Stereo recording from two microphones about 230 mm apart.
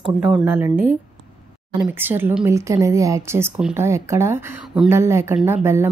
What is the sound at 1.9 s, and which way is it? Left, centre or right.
Speech, centre.